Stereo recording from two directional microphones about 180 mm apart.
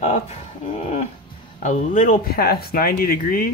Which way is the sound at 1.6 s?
45° left (ahead or behind).